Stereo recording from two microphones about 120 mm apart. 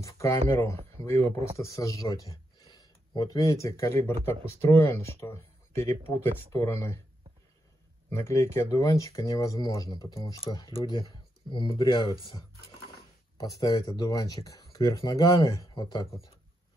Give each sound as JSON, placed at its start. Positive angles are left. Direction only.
{"t": 0.0, "sound": "speech", "side_deg": 25}
{"t": 8.1, "sound": "speech", "side_deg": 25}
{"t": 13.4, "sound": "speech", "side_deg": 30}